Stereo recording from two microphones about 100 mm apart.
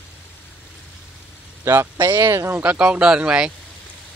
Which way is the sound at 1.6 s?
25° right (ahead or behind).